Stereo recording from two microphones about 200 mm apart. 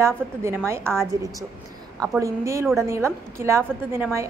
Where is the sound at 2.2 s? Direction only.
15° right (ahead or behind).